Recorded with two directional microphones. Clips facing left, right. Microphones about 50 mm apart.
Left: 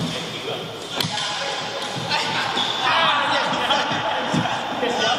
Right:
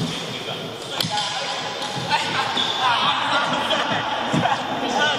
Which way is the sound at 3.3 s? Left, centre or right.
Centre.